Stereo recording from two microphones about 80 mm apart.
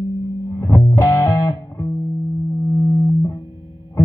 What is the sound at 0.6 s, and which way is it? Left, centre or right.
Music, left.